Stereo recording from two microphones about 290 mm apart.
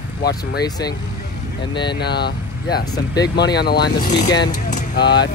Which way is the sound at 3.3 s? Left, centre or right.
Left.